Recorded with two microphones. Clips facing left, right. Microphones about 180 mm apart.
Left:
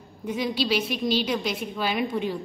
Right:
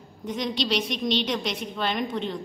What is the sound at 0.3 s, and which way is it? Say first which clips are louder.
A woman's voice: left 2 dB; 5° left (ahead or behind).